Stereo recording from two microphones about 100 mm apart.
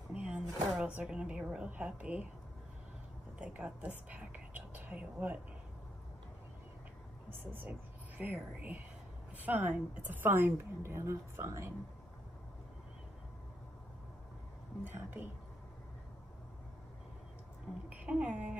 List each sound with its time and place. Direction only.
0.1 s speech: 10° right (ahead or behind)
3.3 s a woman's voice: 10° right (ahead or behind)
4.1 s whispering: 15° right (ahead or behind)
7.2 s a woman's voice: 20° right (ahead or behind)
14.9 s a woman's voice: 20° right (ahead or behind)
17.8 s a woman's voice: 10° right (ahead or behind)